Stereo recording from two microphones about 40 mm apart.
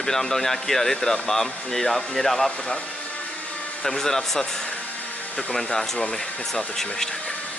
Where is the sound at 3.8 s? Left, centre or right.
Centre.